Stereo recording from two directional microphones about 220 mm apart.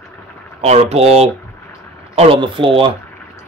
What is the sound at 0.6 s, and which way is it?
Speech, 30° right (ahead or behind).